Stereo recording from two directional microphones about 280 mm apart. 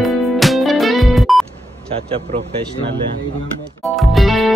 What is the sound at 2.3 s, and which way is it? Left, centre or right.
Speech, centre.